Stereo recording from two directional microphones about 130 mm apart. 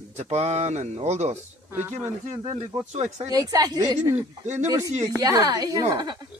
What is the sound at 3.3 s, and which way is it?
Speech, 30° right (ahead or behind).